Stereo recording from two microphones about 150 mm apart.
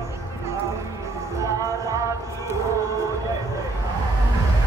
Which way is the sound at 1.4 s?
20° right (ahead or behind).